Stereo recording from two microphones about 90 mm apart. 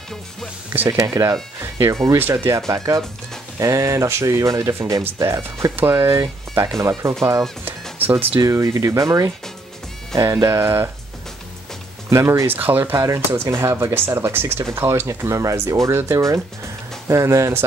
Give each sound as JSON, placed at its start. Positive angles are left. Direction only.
{"t": 0.8, "sound": "speech", "side_deg": -40}
{"t": 1.6, "sound": "speech", "side_deg": -30}
{"t": 7.6, "sound": "music", "side_deg": -20}
{"t": 8.4, "sound": "speech", "side_deg": -35}
{"t": 12.1, "sound": "speech", "side_deg": -35}
{"t": 12.4, "sound": "speech", "side_deg": -20}